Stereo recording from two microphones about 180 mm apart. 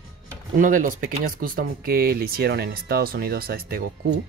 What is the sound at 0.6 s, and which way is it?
Speech, 45° right (ahead or behind).